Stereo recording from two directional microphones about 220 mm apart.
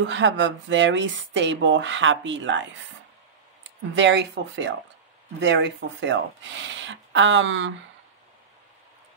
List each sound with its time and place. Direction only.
0.0 s speech: 55° right (ahead or behind)
3.9 s speech: 55° right (ahead or behind)